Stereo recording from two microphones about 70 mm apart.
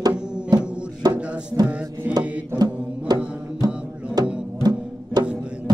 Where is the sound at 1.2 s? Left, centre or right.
Centre.